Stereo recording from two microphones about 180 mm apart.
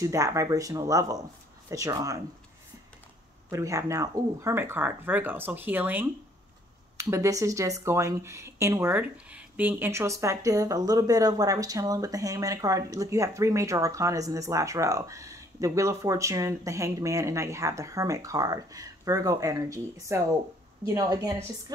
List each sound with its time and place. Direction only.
0.0 s speech: 15° right (ahead or behind)
3.4 s speech: 15° right (ahead or behind)